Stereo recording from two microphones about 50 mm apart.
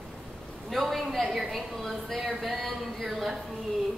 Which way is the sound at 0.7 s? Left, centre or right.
Centre.